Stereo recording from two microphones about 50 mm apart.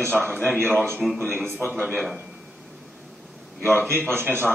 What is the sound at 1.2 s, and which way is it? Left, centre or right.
Speech, right.